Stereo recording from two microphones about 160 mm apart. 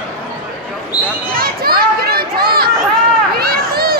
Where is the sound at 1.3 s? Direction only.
70° right (ahead or behind).